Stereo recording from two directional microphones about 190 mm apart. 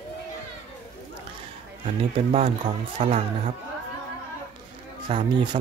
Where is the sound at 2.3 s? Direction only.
30° right (ahead or behind).